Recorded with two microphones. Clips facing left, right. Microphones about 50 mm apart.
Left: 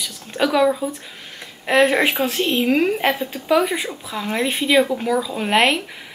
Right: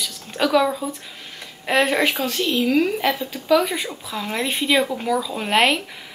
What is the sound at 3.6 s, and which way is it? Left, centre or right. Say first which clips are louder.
A woman's voice: left 3 dB; centre.